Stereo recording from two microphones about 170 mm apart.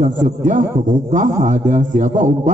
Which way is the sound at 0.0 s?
45° right (ahead or behind).